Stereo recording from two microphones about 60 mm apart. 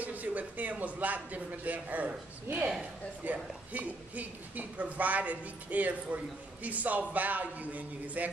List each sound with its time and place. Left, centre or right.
0.0 s a woman's voice: right
3.3 s a woman's voice: right